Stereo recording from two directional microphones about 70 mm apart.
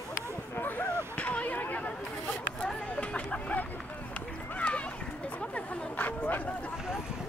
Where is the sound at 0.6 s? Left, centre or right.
Left.